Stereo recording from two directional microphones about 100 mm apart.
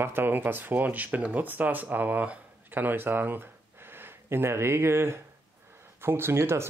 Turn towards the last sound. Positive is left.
turn(degrees=-25)  # may be behind; listen again after turning